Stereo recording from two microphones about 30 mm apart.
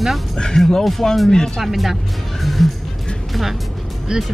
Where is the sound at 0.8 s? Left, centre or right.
Centre.